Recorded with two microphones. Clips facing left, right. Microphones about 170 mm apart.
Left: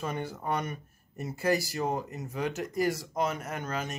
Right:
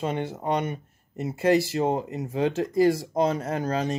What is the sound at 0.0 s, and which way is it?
Speech, 25° right (ahead or behind).